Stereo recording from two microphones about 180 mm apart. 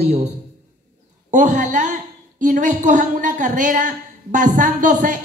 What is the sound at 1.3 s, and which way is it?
A woman's voice, 45° right (ahead or behind).